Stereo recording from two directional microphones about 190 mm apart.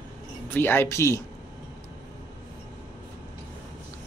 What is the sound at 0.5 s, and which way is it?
Speech, 10° left (ahead or behind).